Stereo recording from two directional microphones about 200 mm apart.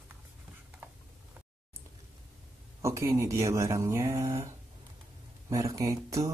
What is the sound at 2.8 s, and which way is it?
Speech, 15° right (ahead or behind).